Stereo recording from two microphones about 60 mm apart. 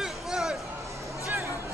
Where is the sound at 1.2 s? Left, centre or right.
Right.